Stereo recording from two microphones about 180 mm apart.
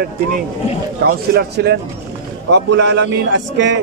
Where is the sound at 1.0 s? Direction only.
65° right (ahead or behind).